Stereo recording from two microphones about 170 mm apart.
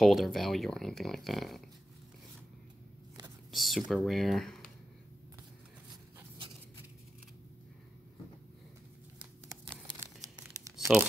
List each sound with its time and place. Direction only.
0.0 s speech: centre (ahead or behind)
3.5 s speech: centre (ahead or behind)
10.6 s tearing: 20° right (ahead or behind)